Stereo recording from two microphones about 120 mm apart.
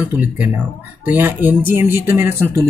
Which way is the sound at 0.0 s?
15° right (ahead or behind).